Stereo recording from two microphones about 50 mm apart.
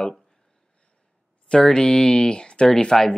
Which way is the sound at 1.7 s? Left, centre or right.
Centre.